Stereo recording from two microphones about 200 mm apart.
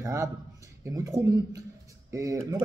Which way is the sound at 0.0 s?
15° right (ahead or behind).